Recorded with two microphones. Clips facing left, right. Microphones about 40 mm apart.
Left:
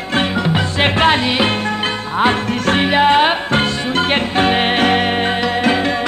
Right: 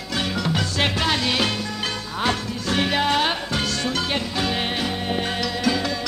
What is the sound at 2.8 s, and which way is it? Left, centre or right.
Music, left.